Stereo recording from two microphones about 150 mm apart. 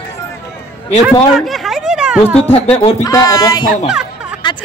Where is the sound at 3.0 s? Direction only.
25° left (ahead or behind).